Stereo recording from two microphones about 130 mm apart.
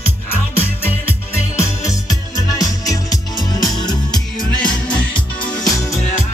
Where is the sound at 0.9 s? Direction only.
20° left (ahead or behind).